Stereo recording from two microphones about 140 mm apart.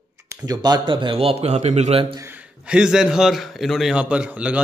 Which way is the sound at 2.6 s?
5° right (ahead or behind).